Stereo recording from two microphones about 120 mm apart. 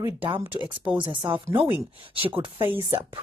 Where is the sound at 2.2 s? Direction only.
50° right (ahead or behind).